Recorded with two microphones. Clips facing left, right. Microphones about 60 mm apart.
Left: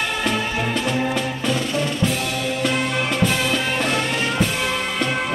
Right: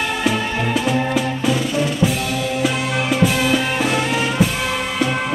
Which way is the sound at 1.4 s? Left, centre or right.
Centre.